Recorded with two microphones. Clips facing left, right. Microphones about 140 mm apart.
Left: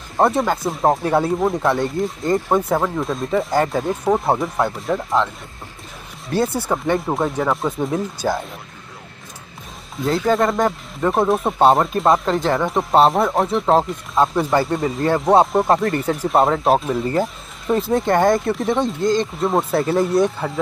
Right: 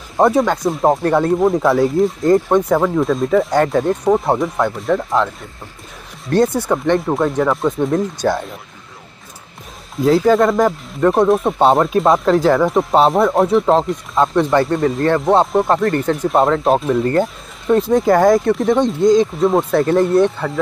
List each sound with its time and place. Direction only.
0.2 s speech: centre (ahead or behind)
9.9 s speech: centre (ahead or behind)